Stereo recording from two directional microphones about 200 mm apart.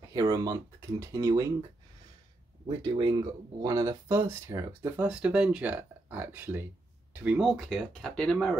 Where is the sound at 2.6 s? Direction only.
25° right (ahead or behind).